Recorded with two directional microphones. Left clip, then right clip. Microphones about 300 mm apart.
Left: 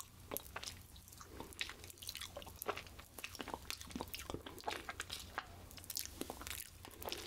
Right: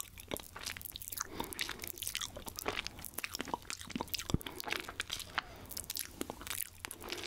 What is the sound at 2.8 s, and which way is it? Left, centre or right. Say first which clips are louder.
Biting: right 8 dB; right.